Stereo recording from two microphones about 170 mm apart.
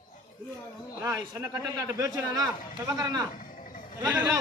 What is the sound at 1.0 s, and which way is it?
A man's voice, 20° right (ahead or behind).